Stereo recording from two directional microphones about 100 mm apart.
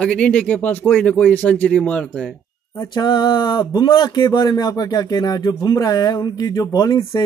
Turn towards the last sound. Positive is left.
turn(degrees=40)  # may be behind; listen again after turning